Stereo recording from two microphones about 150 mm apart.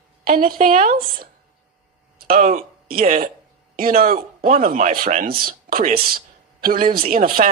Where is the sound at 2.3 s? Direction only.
75° right (ahead or behind).